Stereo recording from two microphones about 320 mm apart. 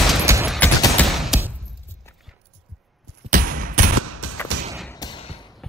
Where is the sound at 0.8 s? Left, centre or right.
Centre.